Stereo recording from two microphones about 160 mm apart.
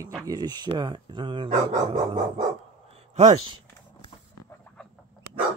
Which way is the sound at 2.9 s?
45° right (ahead or behind).